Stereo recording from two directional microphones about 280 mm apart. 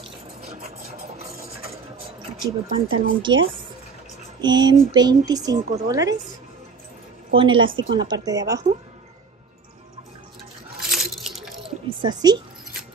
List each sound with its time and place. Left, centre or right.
0.5 s a sound: right
2.4 s speech: centre
4.4 s speech: centre
7.3 s speech: centre
10.8 s a sound: centre
12.0 s speech: centre